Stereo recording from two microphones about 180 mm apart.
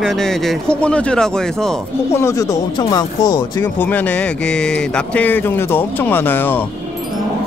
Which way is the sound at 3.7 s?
10° left (ahead or behind).